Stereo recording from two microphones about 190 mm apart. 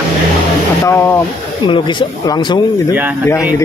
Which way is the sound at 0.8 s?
15° left (ahead or behind).